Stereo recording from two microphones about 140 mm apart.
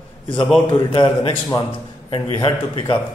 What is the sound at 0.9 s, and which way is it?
A man's voice, 40° left (ahead or behind).